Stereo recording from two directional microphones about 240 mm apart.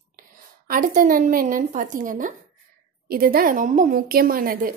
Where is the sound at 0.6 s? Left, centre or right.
Right.